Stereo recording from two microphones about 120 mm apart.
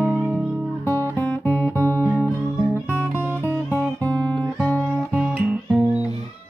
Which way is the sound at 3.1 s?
15° right (ahead or behind).